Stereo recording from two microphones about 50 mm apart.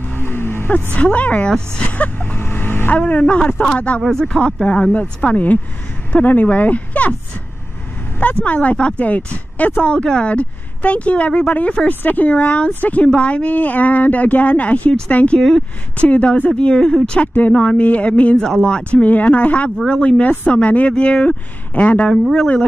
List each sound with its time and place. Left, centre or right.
0.0 s music: left
0.9 s speech: left
2.4 s vehicle: left
2.9 s speech: left
4.1 s speech: centre
8.5 s speech: left
11.9 s speech: left
15.3 s speech: centre
16.1 s speech: left
21.8 s speech: left